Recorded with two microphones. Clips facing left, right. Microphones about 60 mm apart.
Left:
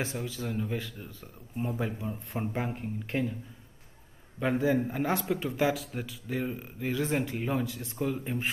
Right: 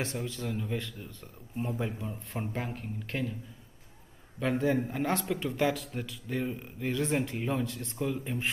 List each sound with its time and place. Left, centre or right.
0.0 s a man's voice: centre
2.6 s speech: centre
4.4 s a man's voice: centre